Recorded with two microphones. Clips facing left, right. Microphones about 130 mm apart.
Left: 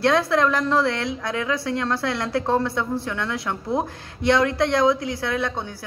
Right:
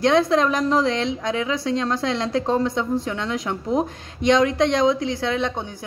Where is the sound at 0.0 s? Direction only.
20° right (ahead or behind).